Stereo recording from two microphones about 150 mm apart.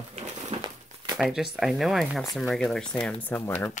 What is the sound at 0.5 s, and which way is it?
Crumpling, 45° right (ahead or behind).